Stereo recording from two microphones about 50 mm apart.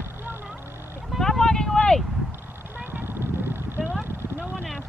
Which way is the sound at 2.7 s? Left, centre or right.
Right.